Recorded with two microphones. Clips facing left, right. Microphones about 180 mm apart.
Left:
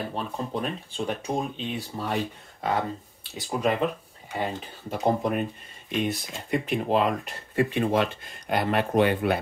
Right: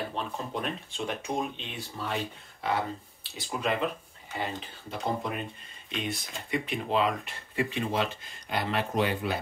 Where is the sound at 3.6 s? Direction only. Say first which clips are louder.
Left 4 dB; 45° left (ahead or behind).